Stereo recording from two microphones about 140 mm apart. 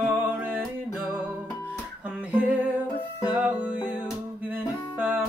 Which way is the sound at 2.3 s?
10° right (ahead or behind).